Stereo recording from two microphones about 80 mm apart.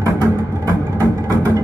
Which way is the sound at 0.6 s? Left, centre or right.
Right.